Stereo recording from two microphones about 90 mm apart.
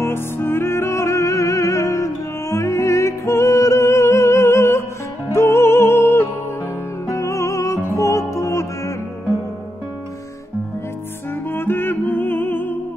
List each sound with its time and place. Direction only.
0.0 s music: 25° left (ahead or behind)
11.5 s music: 25° left (ahead or behind)